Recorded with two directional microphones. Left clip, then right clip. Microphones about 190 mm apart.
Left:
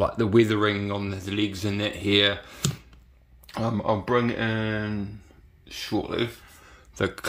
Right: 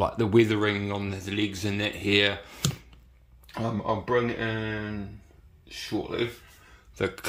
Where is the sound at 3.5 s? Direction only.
40° left (ahead or behind).